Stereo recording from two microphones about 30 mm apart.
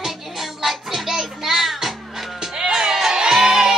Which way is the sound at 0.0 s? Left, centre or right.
Centre.